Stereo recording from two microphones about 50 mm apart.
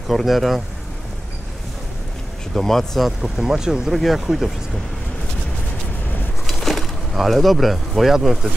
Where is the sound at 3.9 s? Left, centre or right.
Centre.